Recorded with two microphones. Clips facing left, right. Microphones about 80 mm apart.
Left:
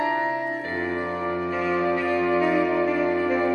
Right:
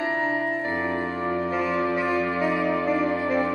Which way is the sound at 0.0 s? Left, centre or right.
Left.